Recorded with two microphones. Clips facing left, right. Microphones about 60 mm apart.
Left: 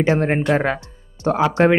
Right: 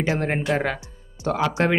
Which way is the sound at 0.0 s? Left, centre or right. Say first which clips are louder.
Left 6 dB; left.